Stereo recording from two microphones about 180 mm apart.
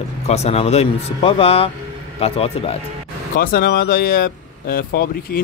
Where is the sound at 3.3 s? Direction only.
55° left (ahead or behind).